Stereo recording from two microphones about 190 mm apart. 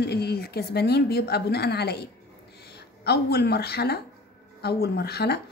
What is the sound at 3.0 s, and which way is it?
A woman's voice, 55° left (ahead or behind).